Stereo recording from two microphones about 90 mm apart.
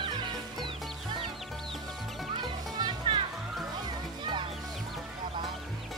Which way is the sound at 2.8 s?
55° right (ahead or behind).